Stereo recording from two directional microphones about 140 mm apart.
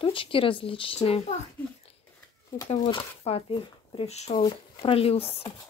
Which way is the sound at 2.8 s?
35° left (ahead or behind).